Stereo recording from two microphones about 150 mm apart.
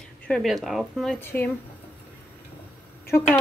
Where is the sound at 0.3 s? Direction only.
Centre (ahead or behind).